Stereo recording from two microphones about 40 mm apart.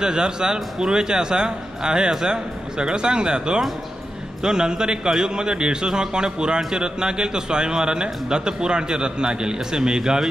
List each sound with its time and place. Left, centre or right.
0.0 s a man's voice: centre